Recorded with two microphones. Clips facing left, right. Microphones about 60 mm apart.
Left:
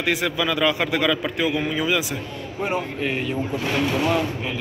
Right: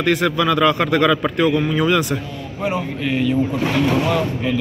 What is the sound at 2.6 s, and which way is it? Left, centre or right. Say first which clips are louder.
Speech: right 2 dB; left.